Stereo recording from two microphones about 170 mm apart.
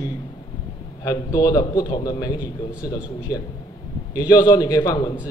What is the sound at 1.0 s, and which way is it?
A man's voice, 20° left (ahead or behind).